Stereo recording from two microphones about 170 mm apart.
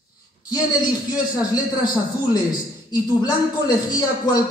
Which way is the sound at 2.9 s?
20° left (ahead or behind).